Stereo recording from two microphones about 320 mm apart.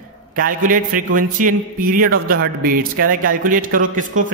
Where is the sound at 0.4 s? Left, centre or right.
Right.